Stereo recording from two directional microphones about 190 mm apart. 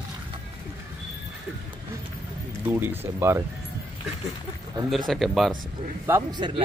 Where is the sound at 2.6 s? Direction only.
10° right (ahead or behind).